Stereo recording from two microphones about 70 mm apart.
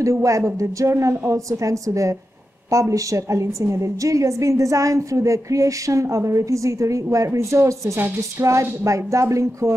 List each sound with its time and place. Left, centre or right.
0.0 s a woman's voice: right